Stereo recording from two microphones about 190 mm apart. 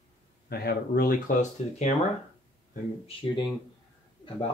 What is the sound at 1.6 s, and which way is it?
Speech, 35° left (ahead or behind).